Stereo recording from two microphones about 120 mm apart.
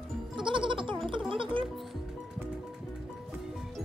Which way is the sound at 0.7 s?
45° right (ahead or behind).